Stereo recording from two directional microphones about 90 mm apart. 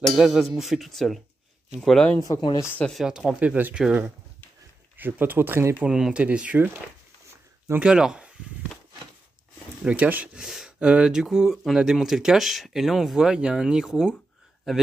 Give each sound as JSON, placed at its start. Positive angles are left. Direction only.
{"t": 0.0, "sound": "speech", "side_deg": 0}
{"t": 2.1, "sound": "speech", "side_deg": 40}
{"t": 2.8, "sound": "speech", "side_deg": 0}
{"t": 4.9, "sound": "speech", "side_deg": -20}
{"t": 5.9, "sound": "speech", "side_deg": -5}
{"t": 7.8, "sound": "speech", "side_deg": -10}
{"t": 9.8, "sound": "speech", "side_deg": -20}
{"t": 10.3, "sound": "speech", "side_deg": -5}